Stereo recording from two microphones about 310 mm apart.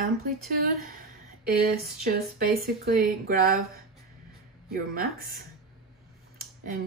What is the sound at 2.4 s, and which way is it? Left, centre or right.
Speech, right.